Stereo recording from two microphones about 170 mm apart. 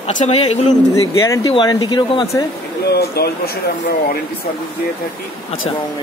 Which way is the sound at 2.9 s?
65° left (ahead or behind).